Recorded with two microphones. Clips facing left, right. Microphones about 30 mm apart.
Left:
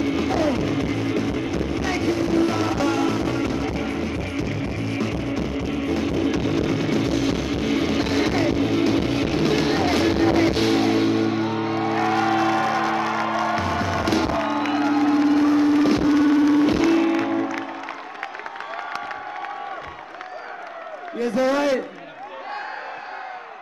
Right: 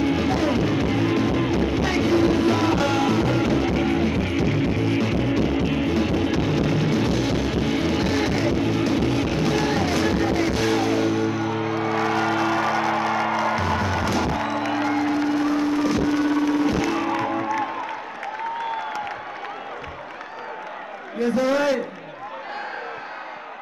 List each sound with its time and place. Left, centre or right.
0.0 s music: centre; by 4.6 s right
4.7 s music: centre
9.0 s music: left
10.7 s music: left
11.9 s music: centre
14.8 s a sound: centre
16.8 s music: centre
17.3 s music: centre
21.2 s a sound: centre